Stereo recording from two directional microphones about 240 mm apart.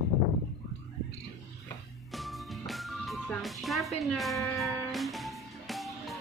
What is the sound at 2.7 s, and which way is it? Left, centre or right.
Music, centre.